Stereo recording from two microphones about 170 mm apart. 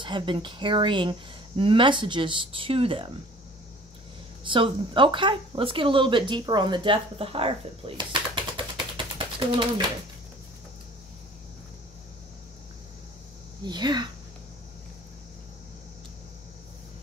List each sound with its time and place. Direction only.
0.0 s speech: 30° right (ahead or behind)
4.5 s speech: 30° right (ahead or behind)
13.7 s speech: 25° right (ahead or behind)